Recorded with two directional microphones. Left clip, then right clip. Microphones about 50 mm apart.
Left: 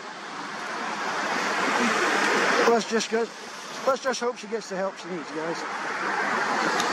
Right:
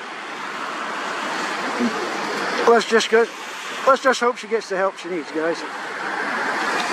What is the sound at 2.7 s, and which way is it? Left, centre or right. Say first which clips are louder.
Speech: right 9 dB; right.